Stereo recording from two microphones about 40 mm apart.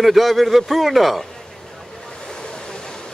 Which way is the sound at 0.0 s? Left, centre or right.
Centre.